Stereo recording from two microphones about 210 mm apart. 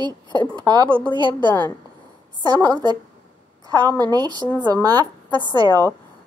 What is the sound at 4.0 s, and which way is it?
A woman's voice, 20° right (ahead or behind).